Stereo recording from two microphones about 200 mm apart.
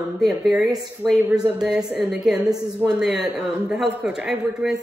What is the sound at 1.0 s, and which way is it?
A woman's voice, 5° right (ahead or behind).